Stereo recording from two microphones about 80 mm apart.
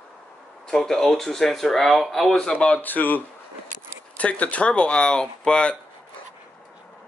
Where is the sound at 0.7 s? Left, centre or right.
Centre.